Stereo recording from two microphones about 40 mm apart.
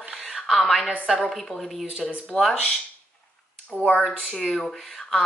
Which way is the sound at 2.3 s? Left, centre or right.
Left.